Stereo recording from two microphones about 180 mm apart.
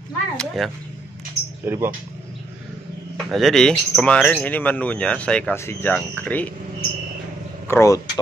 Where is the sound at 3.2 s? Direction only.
Centre (ahead or behind).